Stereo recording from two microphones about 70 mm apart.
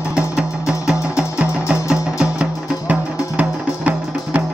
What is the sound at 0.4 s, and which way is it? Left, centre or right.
Music, centre.